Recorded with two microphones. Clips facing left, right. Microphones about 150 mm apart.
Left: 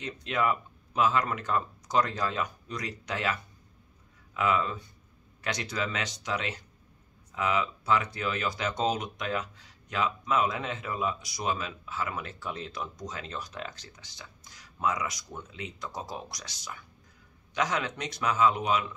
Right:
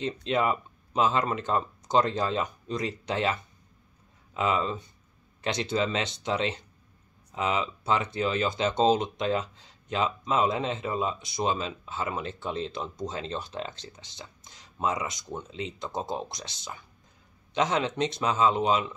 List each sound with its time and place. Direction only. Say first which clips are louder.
0.0 s speech: right 3 dB; 25° right (ahead or behind)